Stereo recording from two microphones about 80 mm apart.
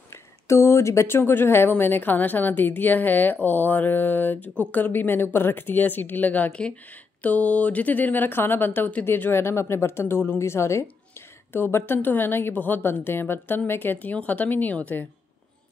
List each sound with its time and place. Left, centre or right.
0.1 s speech: left; by 15.0 s centre